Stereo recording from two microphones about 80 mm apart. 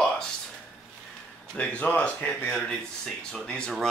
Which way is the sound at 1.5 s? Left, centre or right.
Centre.